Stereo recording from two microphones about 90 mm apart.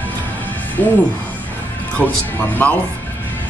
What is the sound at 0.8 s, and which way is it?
Speech, 25° left (ahead or behind).